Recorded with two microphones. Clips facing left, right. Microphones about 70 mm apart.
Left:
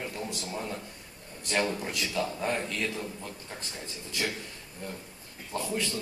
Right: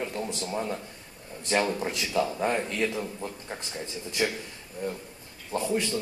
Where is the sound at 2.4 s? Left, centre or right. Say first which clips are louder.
Right 4 dB; right.